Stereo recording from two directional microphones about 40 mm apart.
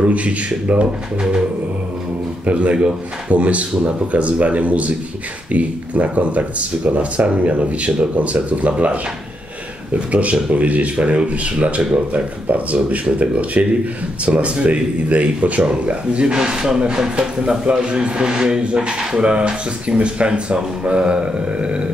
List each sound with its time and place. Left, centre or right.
0.0 s speech: right
2.4 s speech: right
10.1 s speech: right
16.3 s speech: centre